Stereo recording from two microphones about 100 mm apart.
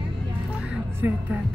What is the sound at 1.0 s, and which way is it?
Speech, 15° right (ahead or behind).